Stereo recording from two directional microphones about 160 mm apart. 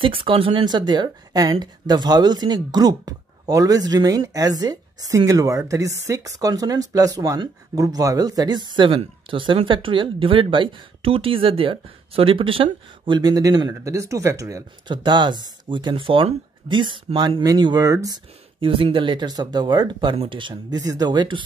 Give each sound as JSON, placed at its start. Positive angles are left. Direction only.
{"t": 0.0, "sound": "speech", "side_deg": -35}